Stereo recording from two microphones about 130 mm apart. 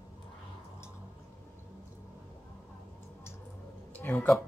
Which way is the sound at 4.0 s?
15° left (ahead or behind).